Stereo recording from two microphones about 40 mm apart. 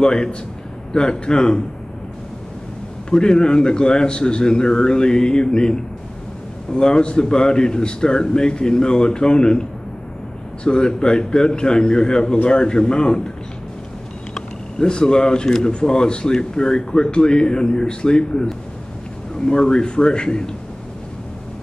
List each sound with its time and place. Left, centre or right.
0.0 s speech: left
3.1 s speech: left
10.6 s speech: left
14.3 s speech: left